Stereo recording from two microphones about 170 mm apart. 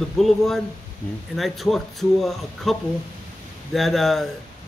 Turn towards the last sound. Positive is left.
turn(degrees=0)  # may be behind; listen again after turning